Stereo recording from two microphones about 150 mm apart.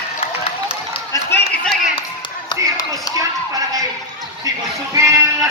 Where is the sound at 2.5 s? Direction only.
30° left (ahead or behind).